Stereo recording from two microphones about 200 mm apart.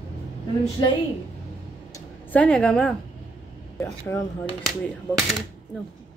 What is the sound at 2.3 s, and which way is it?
Speech, 5° left (ahead or behind).